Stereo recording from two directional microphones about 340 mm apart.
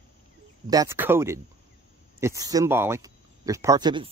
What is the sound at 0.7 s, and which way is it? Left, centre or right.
A man's voice, centre.